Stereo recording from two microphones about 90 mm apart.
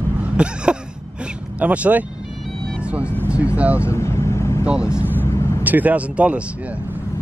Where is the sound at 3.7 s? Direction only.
30° left (ahead or behind).